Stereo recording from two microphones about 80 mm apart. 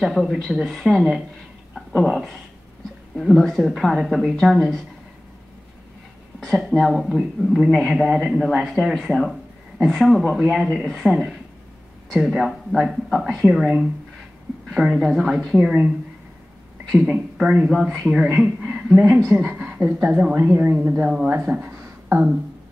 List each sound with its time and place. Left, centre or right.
0.0 s speech: centre
6.5 s speech: centre
15.5 s speech: centre
16.9 s a woman's voice: centre